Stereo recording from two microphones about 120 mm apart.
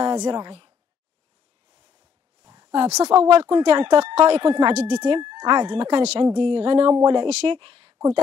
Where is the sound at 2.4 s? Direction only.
40° right (ahead or behind).